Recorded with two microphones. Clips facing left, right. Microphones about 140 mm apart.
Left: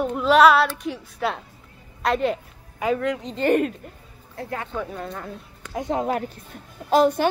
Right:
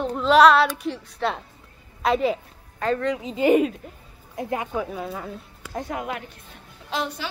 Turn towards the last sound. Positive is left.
turn(degrees=45)  # may be behind; listen again after turning